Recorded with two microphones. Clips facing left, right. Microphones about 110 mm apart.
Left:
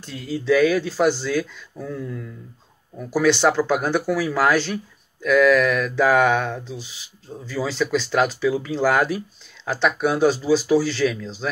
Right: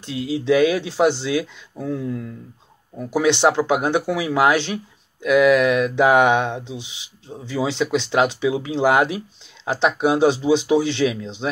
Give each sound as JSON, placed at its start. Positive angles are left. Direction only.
{"t": 0.5, "sound": "speech", "side_deg": -20}